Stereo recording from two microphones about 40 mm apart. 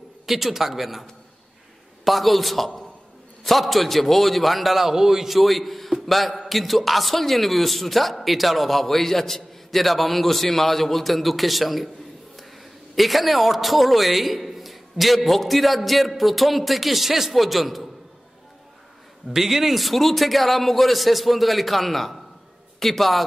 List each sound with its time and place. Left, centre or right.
0.3 s a man's voice: centre
2.0 s a man's voice: centre
12.9 s a man's voice: centre
19.3 s a man's voice: centre